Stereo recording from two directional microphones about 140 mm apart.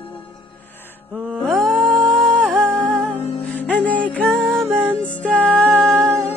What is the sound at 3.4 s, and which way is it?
Music, 10° left (ahead or behind).